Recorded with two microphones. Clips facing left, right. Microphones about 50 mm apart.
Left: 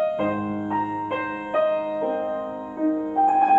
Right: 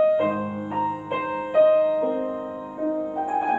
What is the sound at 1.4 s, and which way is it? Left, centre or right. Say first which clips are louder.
Music: right 6 dB; left.